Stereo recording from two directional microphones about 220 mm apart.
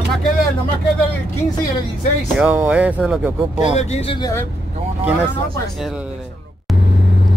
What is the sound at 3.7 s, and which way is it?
Speech, 25° left (ahead or behind).